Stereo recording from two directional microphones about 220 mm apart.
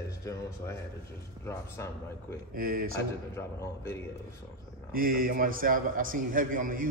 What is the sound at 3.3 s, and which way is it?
Speech, 10° left (ahead or behind).